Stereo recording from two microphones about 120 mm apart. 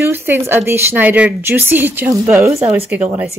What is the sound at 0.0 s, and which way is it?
A woman's voice, 15° right (ahead or behind).